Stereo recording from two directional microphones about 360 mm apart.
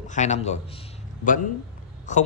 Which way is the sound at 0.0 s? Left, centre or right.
Centre.